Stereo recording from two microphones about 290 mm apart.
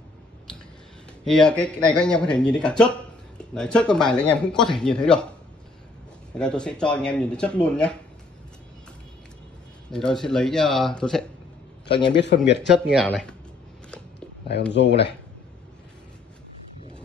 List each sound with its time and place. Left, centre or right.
1.2 s speech: centre
6.3 s speech: centre
9.8 s speech: centre
12.1 s speech: left
12.9 s speech: centre
14.7 s speech: left